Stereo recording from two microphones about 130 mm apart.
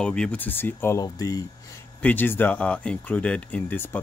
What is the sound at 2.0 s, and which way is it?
Speech, 15° left (ahead or behind).